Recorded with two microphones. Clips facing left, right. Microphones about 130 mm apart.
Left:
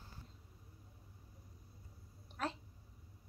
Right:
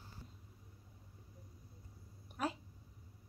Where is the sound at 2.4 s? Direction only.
10° right (ahead or behind).